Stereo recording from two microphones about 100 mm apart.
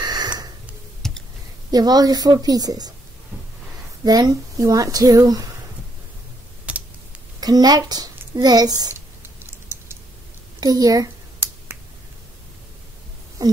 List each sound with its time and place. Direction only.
0.0 s a sound: 45° right (ahead or behind)
1.0 s clicking: 5° left (ahead or behind)
1.7 s speech: 40° right (ahead or behind)
4.0 s speech: 40° right (ahead or behind)
6.6 s computer keyboard: 15° right (ahead or behind)
7.3 s speech: 40° right (ahead or behind)
10.6 s speech: 40° right (ahead or behind)
11.3 s finger snapping: 20° right (ahead or behind)
13.4 s a sound: 40° right (ahead or behind)